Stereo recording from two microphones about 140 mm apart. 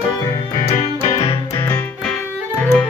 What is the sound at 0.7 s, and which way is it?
Keyboard, 50° left (ahead or behind).